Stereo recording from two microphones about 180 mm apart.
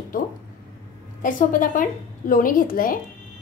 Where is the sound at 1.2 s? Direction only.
45° left (ahead or behind).